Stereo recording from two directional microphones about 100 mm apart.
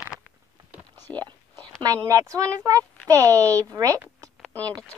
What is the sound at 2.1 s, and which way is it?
A woman's voice, 30° right (ahead or behind).